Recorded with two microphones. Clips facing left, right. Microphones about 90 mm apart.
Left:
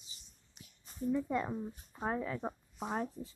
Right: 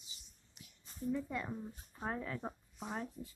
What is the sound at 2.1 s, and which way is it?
Speech, 10° left (ahead or behind).